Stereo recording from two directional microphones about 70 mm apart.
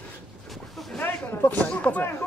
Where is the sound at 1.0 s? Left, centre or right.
Left.